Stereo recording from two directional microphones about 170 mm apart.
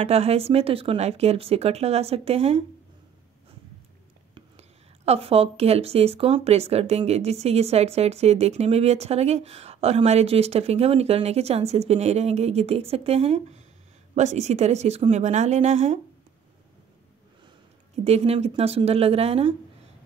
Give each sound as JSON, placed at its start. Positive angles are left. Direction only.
{"t": 0.0, "sound": "speech", "side_deg": -35}
{"t": 4.6, "sound": "speech", "side_deg": -40}
{"t": 18.0, "sound": "speech", "side_deg": -35}